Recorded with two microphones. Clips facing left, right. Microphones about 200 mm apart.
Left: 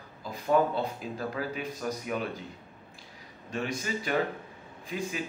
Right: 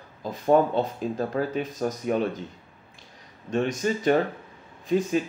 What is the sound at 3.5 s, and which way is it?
Speech, 40° right (ahead or behind).